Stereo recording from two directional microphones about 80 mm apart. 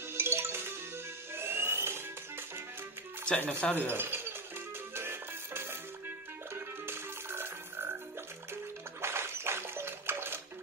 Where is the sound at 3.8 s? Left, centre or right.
Right.